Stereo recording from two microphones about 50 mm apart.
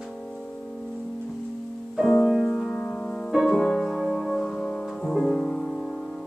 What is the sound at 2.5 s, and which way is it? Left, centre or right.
Music, centre.